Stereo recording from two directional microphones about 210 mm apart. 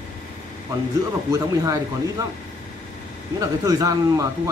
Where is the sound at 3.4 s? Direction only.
15° right (ahead or behind).